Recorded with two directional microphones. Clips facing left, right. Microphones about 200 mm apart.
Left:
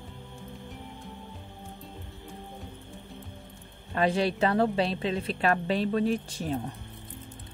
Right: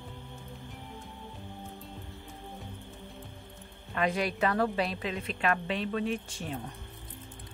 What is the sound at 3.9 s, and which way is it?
A woman's voice, 30° left (ahead or behind).